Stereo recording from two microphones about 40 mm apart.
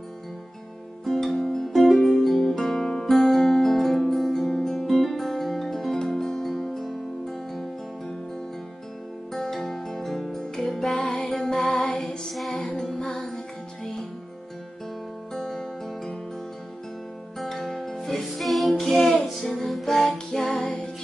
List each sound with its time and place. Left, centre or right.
1.0 s music: centre
9.3 s music: centre; by 12.0 s left
12.3 s music: centre
12.9 s music: centre
15.3 s music: centre
17.8 s music: centre
20.0 s music: centre